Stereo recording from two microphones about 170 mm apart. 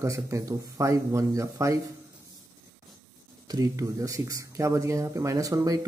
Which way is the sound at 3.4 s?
20° right (ahead or behind).